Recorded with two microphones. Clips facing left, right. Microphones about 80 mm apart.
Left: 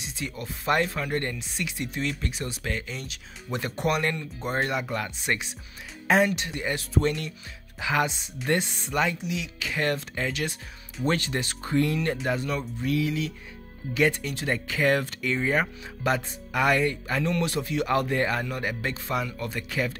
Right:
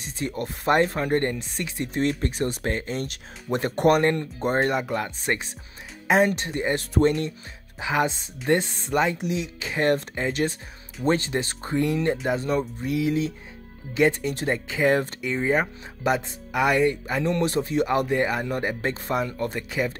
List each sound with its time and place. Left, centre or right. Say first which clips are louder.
0.0 s speech: right 5 dB; right
0.7 s speech: right 4 dB; right
4.8 s speech: right 3 dB; right
5.2 s speech: right 2 dB; right
6.0 s speech: right 2 dB; right
6.3 s speech: right 4 dB; right; by 18.5 s centre
18.5 s speech: right 4 dB; right